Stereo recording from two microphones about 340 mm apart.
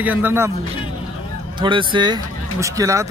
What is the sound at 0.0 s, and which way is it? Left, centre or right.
Speech, centre.